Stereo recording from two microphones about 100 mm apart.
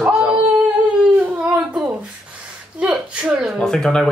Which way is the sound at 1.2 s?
20° right (ahead or behind).